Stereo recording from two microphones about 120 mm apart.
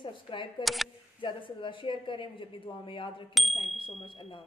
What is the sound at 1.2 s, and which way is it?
A woman's voice, 45° left (ahead or behind).